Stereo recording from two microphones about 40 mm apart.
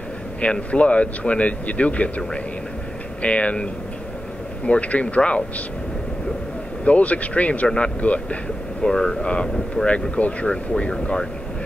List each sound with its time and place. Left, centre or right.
0.4 s speech: left
4.6 s speech: left
6.8 s speech: left
8.8 s speech: centre; by 10.5 s left
10.5 s speech: left